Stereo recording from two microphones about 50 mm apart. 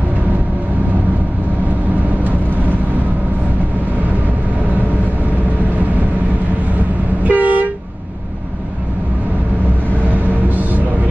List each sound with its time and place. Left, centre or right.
7.2 s train: right
10.1 s music: right